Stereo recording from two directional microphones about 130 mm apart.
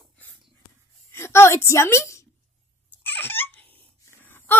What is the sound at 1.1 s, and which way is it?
A woman's voice, 20° left (ahead or behind).